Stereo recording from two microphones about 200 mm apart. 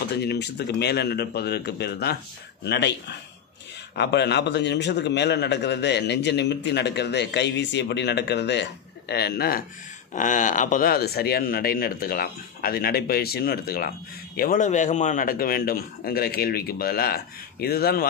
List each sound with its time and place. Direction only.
0.2 s a man's voice: 55° left (ahead or behind)
10.1 s speech: 40° left (ahead or behind)